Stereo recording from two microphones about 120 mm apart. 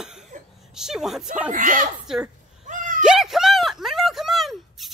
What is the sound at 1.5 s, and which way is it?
Speech, 90° right.